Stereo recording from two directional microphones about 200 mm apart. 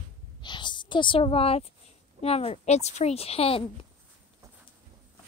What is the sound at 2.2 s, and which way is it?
A woman's voice, 30° left (ahead or behind).